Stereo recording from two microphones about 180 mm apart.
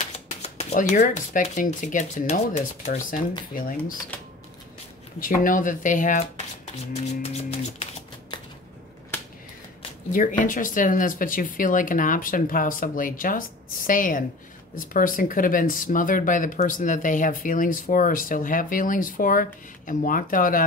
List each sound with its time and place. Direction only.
0.3 s speech: 35° left (ahead or behind)
4.1 s speech: 10° left (ahead or behind)
5.2 s speech: 50° left (ahead or behind)
7.2 s music: 35° left (ahead or behind)
10.1 s speech: 50° left (ahead or behind)